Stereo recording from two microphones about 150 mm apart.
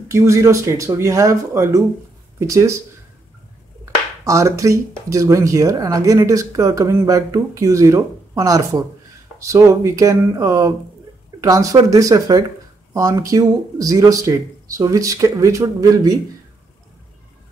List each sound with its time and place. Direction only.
0.1 s speech: 20° right (ahead or behind)
4.2 s speech: 20° right (ahead or behind)